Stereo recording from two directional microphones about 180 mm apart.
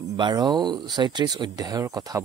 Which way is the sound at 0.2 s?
25° right (ahead or behind).